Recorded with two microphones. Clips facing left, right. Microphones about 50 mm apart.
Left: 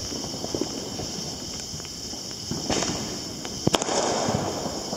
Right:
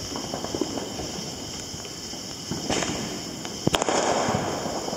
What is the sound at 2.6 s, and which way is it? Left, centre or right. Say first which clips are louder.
Fireworks: even; centre.